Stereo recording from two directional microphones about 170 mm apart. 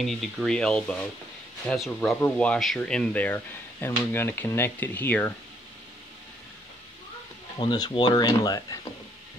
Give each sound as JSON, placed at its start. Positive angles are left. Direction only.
{"t": 0.0, "sound": "speech", "side_deg": 0}
{"t": 7.5, "sound": "speech", "side_deg": 25}